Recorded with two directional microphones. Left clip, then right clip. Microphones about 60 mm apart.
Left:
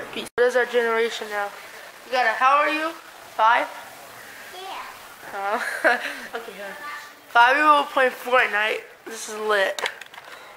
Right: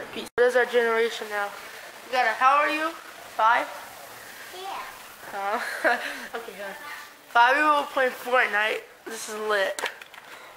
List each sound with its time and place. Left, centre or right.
0.4 s speech: centre
3.3 s speech: centre
5.3 s speech: centre
7.7 s speech: left
8.3 s speech: centre
9.5 s speech: centre